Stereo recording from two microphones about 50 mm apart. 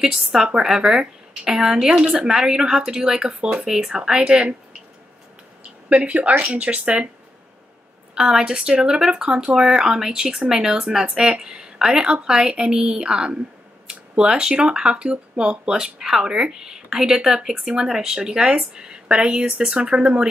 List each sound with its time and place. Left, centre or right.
0.2 s speech: centre
5.6 s a sound: right
6.4 s speech: right
8.1 s speech: centre